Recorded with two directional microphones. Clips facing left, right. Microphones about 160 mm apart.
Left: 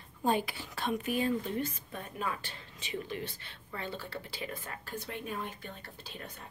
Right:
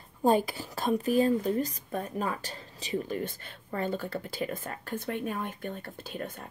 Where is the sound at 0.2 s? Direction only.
40° right (ahead or behind).